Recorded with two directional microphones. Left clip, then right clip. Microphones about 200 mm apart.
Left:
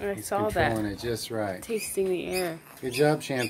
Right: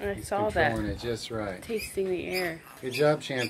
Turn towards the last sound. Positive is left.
turn(degrees=40)  # may be behind; listen again after turning